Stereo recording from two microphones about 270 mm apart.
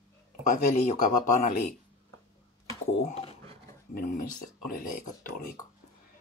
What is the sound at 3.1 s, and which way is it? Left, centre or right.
Speech, left.